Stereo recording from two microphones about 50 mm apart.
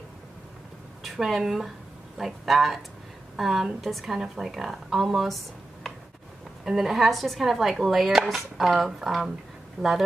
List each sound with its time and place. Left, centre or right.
1.0 s a woman's voice: centre
6.6 s a woman's voice: centre